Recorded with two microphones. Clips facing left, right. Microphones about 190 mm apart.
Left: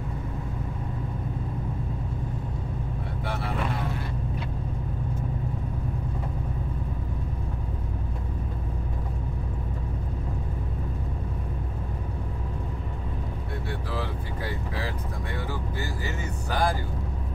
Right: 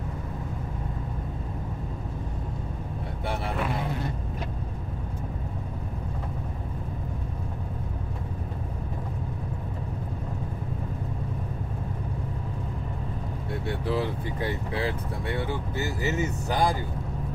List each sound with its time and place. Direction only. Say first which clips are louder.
15.3 s vehicle: right 3 dB; 20° right (ahead or behind)